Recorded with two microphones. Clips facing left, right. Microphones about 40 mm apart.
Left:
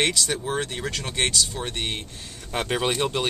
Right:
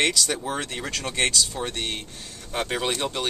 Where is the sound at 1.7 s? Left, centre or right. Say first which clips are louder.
Left 1 dB; centre.